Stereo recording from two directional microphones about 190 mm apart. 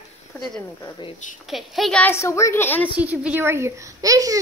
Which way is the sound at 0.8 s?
25° left (ahead or behind).